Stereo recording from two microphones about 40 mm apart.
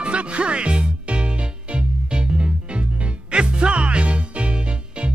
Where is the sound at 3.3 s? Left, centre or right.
Right.